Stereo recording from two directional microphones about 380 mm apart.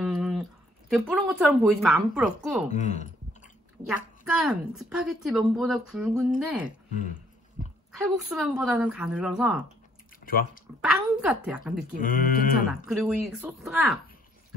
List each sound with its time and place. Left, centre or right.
0.0 s speech: centre
2.7 s speech: centre
4.3 s speech: centre
8.0 s speech: centre
10.2 s speech: left
10.8 s speech: centre
12.0 s speech: left
12.7 s speech: centre